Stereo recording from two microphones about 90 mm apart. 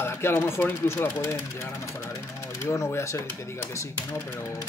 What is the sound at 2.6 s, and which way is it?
Speech, 30° left (ahead or behind).